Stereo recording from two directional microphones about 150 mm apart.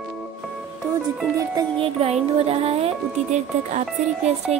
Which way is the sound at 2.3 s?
40° right (ahead or behind).